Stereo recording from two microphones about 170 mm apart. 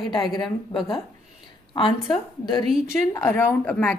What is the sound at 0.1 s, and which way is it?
A woman's voice, 25° left (ahead or behind).